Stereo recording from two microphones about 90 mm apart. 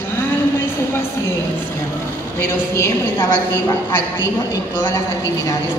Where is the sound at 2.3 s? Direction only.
30° left (ahead or behind).